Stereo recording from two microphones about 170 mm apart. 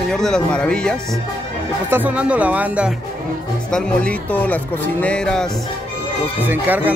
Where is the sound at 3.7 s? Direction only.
5° left (ahead or behind).